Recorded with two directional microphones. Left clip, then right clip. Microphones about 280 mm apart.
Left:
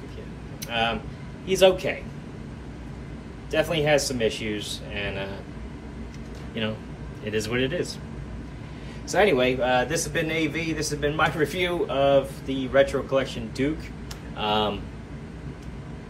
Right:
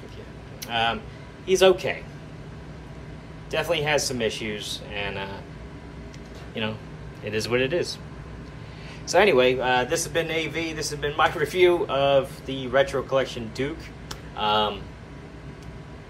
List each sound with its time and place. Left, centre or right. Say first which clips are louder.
0.7 s a man's voice: right 1 dB; centre
3.5 s a man's voice: left 2 dB; centre
6.6 s a man's voice: even; centre
9.0 s a man's voice: right 2 dB; centre